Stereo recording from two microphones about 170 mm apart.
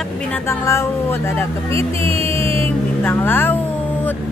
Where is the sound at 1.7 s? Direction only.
35° right (ahead or behind).